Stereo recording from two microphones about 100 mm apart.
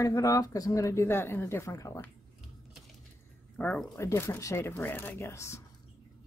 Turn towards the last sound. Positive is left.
turn(degrees=30)  # may be behind; listen again after turning